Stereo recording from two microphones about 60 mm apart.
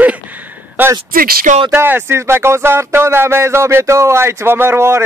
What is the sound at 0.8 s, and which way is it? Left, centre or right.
Speech, right.